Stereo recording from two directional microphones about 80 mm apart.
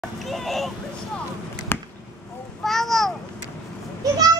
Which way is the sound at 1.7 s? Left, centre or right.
Left.